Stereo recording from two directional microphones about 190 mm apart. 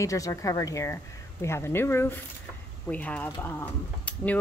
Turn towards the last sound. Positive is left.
turn(degrees=10)  # may be behind; listen again after turning